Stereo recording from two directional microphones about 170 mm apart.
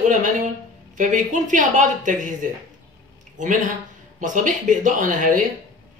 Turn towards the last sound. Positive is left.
turn(degrees=-50)  # may be behind; listen again after turning